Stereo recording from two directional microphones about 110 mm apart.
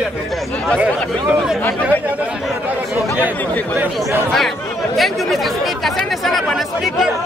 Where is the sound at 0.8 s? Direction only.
10° right (ahead or behind).